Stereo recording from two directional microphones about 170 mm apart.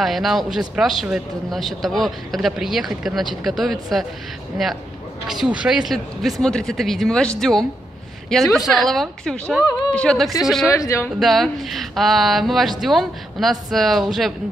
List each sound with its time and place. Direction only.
0.0 s speech: centre (ahead or behind)
9.7 s speech: 25° left (ahead or behind)
9.9 s speech: 5° left (ahead or behind)
10.7 s speech: 15° left (ahead or behind)
11.1 s speech: centre (ahead or behind)